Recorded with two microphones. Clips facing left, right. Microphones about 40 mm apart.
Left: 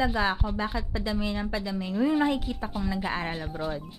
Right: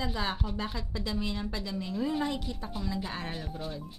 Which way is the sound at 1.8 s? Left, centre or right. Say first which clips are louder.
Left 7 dB; left.